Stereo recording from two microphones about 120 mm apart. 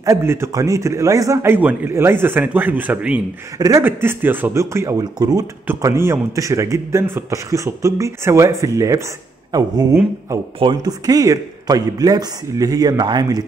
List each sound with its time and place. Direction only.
0.0 s a man's voice: 25° right (ahead or behind)
3.5 s speech: 30° right (ahead or behind)
3.8 s a man's voice: 20° right (ahead or behind); by 13.4 s 35° right (ahead or behind)